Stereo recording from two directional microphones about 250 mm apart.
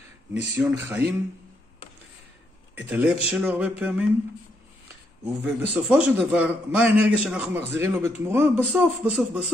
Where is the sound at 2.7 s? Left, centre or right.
Centre.